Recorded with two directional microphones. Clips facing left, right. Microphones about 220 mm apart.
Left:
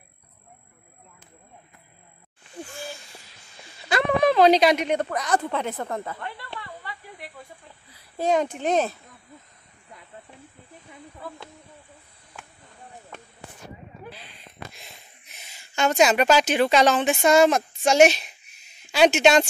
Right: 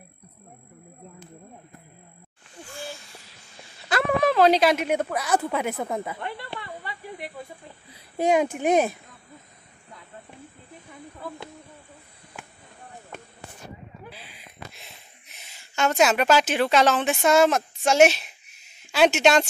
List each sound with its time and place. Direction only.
3.9 s a woman's voice: centre (ahead or behind); by 6.4 s 20° right (ahead or behind)
6.8 s snake: 20° right (ahead or behind)
7.9 s a child's voice: 15° right (ahead or behind)
14.1 s a sound: 5° right (ahead or behind)